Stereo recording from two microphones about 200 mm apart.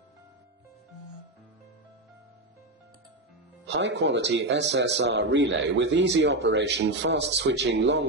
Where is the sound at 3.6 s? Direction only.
60° right (ahead or behind).